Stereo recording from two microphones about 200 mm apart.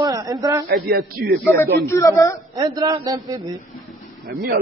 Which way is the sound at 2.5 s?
20° right (ahead or behind).